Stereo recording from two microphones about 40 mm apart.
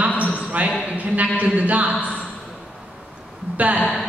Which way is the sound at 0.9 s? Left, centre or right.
Right.